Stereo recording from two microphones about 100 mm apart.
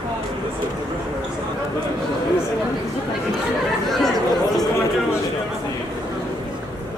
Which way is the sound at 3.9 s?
5° left (ahead or behind).